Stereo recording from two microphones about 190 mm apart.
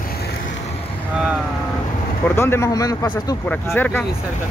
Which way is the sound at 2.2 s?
10° left (ahead or behind).